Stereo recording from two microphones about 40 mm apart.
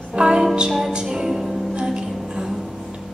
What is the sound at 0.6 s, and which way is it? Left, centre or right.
Music, centre.